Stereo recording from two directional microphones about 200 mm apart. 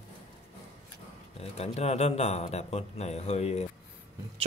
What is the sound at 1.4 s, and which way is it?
Speech, 30° left (ahead or behind).